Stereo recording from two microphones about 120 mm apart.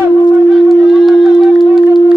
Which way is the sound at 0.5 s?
Centre (ahead or behind).